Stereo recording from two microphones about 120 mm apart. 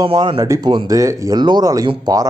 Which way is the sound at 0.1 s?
50° right (ahead or behind).